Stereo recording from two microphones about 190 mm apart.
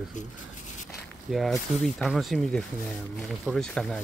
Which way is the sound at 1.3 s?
Centre (ahead or behind).